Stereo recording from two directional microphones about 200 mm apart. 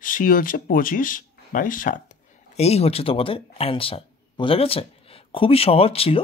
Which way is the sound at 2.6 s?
30° left (ahead or behind).